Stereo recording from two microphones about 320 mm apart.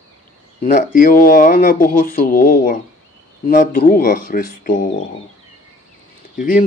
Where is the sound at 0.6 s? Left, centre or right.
Left.